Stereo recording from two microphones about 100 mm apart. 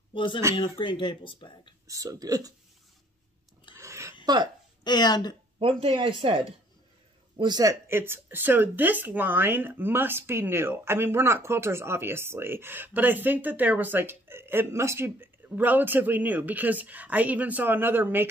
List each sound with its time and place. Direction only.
0.1 s speech: 55° left (ahead or behind)
1.9 s speech: 35° right (ahead or behind)
3.7 s a sound: 30° right (ahead or behind)
4.8 s speech: 45° left (ahead or behind)
5.6 s speech: 70° right (ahead or behind)
7.3 s speech: 45° right (ahead or behind)
7.9 s speech: 20° right (ahead or behind)